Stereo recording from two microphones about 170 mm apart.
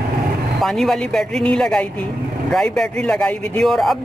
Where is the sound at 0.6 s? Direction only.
Centre (ahead or behind).